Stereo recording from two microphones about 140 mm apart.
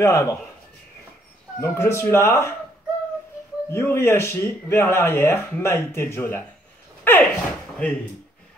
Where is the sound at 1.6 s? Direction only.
20° left (ahead or behind).